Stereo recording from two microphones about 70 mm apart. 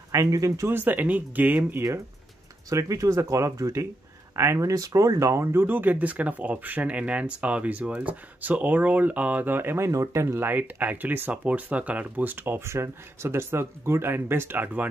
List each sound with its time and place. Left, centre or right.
0.1 s speech: right
0.7 s speech: right
2.7 s speech: right
5.4 s speech: right
9.8 s speech: right